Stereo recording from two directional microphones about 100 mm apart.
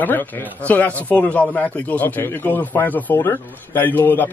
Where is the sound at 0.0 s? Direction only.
20° left (ahead or behind).